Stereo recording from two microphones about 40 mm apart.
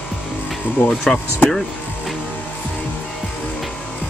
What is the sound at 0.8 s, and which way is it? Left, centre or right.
Speech, left.